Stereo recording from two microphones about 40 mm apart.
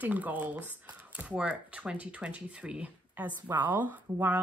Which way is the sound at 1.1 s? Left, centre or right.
Right.